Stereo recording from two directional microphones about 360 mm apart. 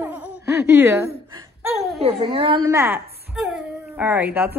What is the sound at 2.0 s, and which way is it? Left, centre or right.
Speech, centre.